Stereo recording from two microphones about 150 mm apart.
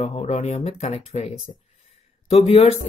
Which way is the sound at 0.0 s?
45° left (ahead or behind).